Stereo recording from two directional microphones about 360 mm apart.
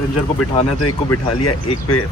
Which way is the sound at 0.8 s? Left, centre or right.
Left.